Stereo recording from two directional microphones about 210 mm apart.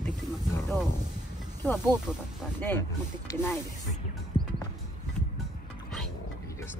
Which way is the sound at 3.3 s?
10° left (ahead or behind).